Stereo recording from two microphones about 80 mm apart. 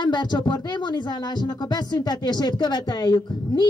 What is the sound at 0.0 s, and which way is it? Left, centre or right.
Speech, left.